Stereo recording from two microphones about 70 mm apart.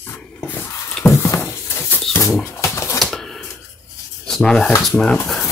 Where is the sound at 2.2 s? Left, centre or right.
Left.